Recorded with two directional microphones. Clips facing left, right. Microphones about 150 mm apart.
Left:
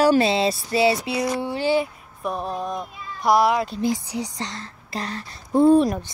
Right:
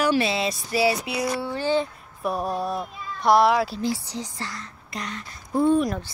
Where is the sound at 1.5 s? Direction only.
15° left (ahead or behind).